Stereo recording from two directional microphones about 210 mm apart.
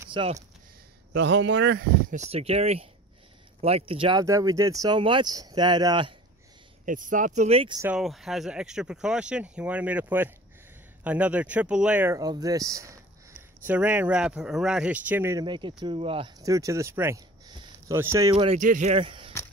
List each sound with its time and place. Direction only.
0.1 s speech: 25° right (ahead or behind)
1.1 s speech: 55° right (ahead or behind)
2.1 s speech: 30° right (ahead or behind)
6.9 s speech: 40° right (ahead or behind)
7.8 s speech: 5° right (ahead or behind)
18.3 s speech: 25° right (ahead or behind)